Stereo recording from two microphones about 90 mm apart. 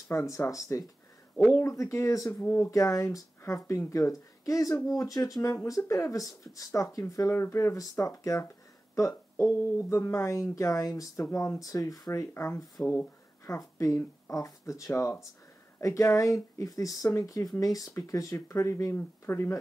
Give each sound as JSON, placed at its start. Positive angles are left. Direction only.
{"t": 0.1, "sound": "speech", "side_deg": 30}
{"t": 12.8, "sound": "a sound", "side_deg": 25}
{"t": 13.6, "sound": "speech", "side_deg": 35}